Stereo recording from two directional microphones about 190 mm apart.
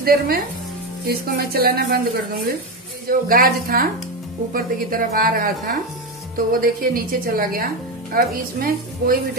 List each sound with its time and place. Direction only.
0.0 s speech: 50° right (ahead or behind)
3.1 s speech: 50° right (ahead or behind)